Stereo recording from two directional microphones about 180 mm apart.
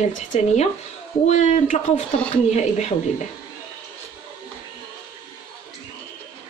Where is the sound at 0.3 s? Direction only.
35° left (ahead or behind).